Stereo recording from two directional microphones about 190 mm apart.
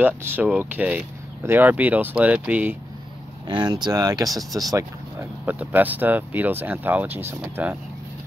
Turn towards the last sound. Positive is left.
turn(degrees=-10)  # may be behind; listen again after turning